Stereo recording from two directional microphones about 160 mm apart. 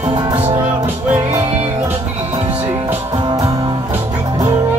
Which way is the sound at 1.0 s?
15° right (ahead or behind).